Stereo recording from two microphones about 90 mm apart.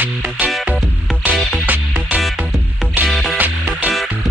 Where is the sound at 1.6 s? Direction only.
20° right (ahead or behind).